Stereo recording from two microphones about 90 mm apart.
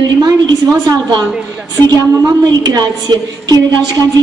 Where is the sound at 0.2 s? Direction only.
45° right (ahead or behind).